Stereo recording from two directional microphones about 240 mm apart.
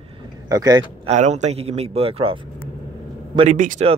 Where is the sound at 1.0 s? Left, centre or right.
Right.